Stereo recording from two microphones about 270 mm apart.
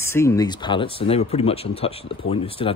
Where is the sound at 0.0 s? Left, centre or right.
Centre.